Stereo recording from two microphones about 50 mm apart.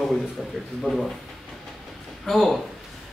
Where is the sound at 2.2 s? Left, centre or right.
Centre.